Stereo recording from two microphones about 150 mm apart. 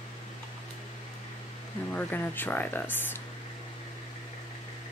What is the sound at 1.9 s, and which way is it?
Speech, 15° left (ahead or behind).